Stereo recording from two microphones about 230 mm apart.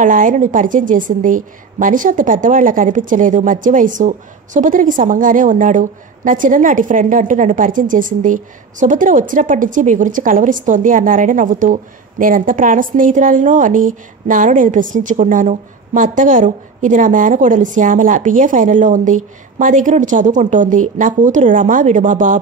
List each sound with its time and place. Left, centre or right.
0.0 s a woman's voice: right